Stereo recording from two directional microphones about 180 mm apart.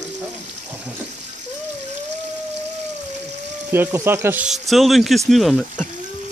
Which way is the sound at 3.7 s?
10° right (ahead or behind).